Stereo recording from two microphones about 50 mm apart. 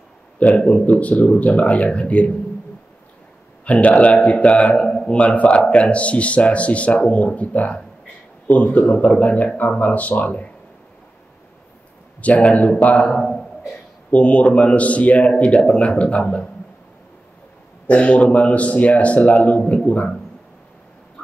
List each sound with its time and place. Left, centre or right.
0.4 s a man's voice: left
3.6 s a man's voice: left
12.2 s a man's voice: left
13.1 s a man's voice: centre
14.1 s a man's voice: left
17.8 s a man's voice: left